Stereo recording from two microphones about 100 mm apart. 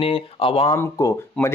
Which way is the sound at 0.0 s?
70° left (ahead or behind).